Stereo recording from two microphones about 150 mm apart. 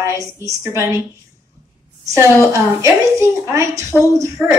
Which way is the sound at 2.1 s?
20° right (ahead or behind).